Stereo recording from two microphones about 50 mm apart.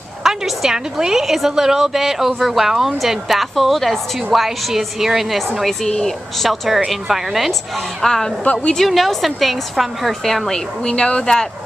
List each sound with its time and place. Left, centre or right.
0.2 s a woman's voice: centre
5.8 s speech: centre
6.4 s a woman's voice: centre
8.0 s a woman's voice: centre
10.8 s speech: centre